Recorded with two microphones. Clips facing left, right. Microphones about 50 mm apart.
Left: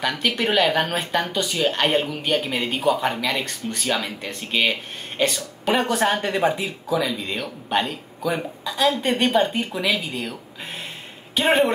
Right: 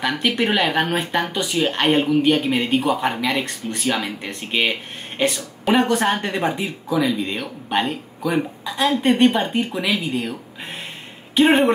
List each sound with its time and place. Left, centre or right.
0.0 s speech: centre
5.7 s speech: centre
11.3 s speech: centre